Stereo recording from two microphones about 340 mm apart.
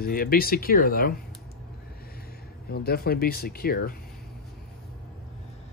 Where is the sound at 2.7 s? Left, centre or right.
Left.